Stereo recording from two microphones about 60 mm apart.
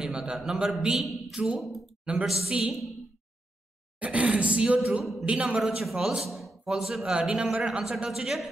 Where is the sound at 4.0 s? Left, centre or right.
Right.